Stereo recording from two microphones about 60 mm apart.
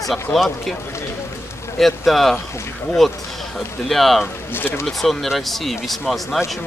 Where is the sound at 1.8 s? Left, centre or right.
Centre.